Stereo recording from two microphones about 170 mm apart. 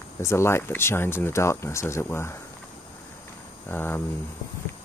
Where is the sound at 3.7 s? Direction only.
15° left (ahead or behind).